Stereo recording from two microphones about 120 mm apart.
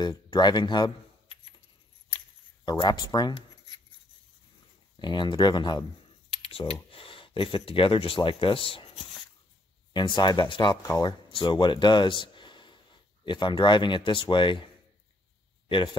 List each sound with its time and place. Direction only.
0.0 s speech: 40° left (ahead or behind)
2.8 s speech: 40° left (ahead or behind)
4.9 s speech: 40° left (ahead or behind)
6.5 s speech: 50° left (ahead or behind)
9.9 s speech: 40° left (ahead or behind)
15.7 s speech: 45° left (ahead or behind)